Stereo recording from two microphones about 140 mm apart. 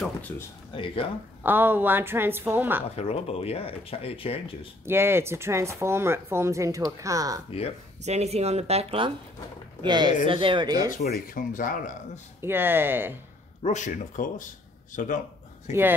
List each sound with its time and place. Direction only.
0.7 s speech: 40° left (ahead or behind)
1.4 s a woman's voice: 15° right (ahead or behind)
3.0 s speech: 45° left (ahead or behind)
4.8 s speech: 15° right (ahead or behind)
8.0 s speech: 50° right (ahead or behind)
9.8 s speech: 30° right (ahead or behind)
10.9 s speech: 75° left (ahead or behind)
12.4 s a woman's voice: 15° right (ahead or behind)
13.6 s speech: 55° left (ahead or behind)